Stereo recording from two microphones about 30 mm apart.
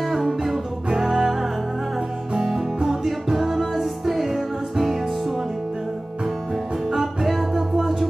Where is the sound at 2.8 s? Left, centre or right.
Centre.